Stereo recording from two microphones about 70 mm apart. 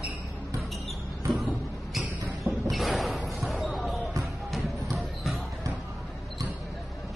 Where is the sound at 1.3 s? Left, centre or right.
Centre.